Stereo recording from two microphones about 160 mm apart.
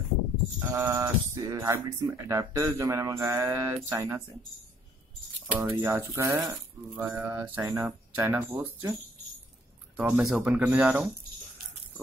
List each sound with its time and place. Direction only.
0.6 s speech: 15° right (ahead or behind)
5.7 s speech: 15° right (ahead or behind)
9.9 s speech: 10° right (ahead or behind)